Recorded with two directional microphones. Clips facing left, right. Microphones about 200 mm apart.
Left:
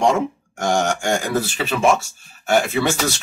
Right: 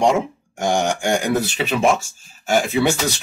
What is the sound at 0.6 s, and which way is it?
Speech, 15° right (ahead or behind).